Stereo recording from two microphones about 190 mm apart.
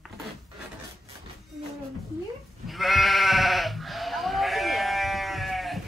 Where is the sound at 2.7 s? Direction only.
Centre (ahead or behind).